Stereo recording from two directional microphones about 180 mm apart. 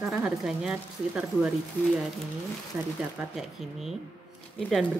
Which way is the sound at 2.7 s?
15° right (ahead or behind).